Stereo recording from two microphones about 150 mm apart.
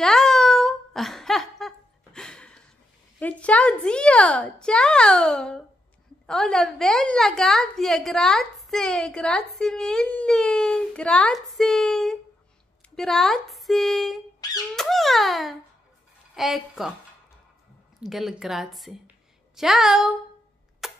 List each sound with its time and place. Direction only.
0.0 s a sound: centre (ahead or behind)
3.2 s a woman's voice: 10° left (ahead or behind)
14.4 s speech: 25° left (ahead or behind)
14.8 s a woman's voice: centre (ahead or behind)
18.0 s a woman's voice: centre (ahead or behind)
19.0 s a sound: 5° right (ahead or behind)
20.8 s camera: centre (ahead or behind)